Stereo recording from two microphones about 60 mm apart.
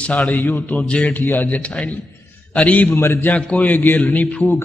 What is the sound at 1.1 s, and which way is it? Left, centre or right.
Music, left.